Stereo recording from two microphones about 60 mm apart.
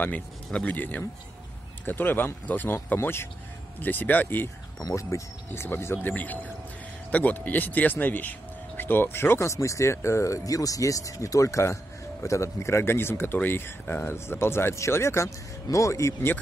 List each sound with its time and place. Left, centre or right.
0.5 s speech: centre
0.7 s speech: left
3.8 s speech: left
4.7 s speech: left
5.5 s a man's voice: left
6.0 s a man's voice: left